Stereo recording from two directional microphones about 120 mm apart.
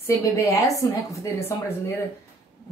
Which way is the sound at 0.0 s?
25° left (ahead or behind).